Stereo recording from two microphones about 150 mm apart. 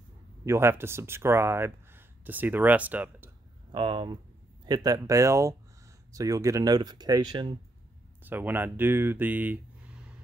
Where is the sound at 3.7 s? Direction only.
35° right (ahead or behind).